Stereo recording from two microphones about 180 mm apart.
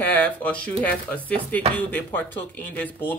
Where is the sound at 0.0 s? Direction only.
10° left (ahead or behind).